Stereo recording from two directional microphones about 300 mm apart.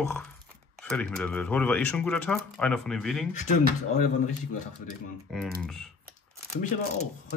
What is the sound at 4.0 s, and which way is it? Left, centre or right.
Speech, left.